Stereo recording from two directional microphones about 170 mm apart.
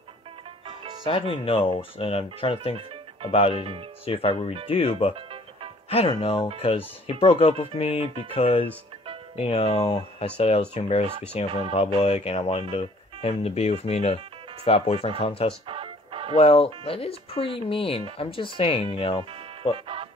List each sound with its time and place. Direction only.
1.0 s speech: 30° left (ahead or behind)
15.7 s music: 30° right (ahead or behind)
16.3 s speech: 35° left (ahead or behind)